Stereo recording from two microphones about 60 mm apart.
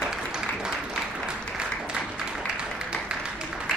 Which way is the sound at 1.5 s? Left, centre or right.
Centre.